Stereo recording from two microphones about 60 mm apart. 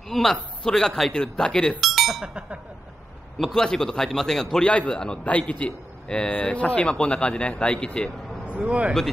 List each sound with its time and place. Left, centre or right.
0.1 s a man's voice: centre
1.8 s chink: centre
2.2 s speech: centre
3.3 s a man's voice: centre
8.5 s speech: right